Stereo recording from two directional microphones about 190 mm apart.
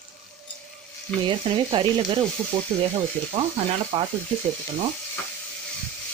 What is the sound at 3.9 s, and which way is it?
Speech, 30° right (ahead or behind).